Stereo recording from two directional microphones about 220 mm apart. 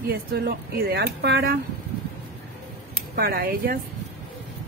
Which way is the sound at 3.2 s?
45° right (ahead or behind).